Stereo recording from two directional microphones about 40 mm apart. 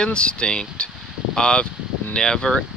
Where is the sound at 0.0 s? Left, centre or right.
Left.